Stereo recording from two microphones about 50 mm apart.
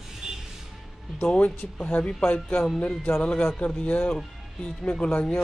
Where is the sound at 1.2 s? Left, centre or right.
Left.